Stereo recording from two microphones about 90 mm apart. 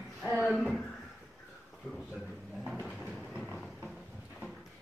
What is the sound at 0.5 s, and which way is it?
Speech, 5° left (ahead or behind).